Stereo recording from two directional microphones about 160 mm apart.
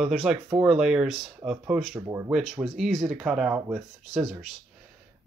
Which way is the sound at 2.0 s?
20° right (ahead or behind).